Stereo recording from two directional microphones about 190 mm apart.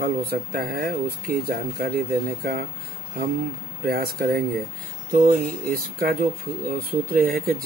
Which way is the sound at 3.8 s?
50° right (ahead or behind).